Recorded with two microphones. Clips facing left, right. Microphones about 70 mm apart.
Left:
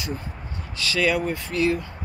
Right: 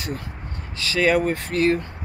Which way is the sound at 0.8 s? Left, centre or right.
Right.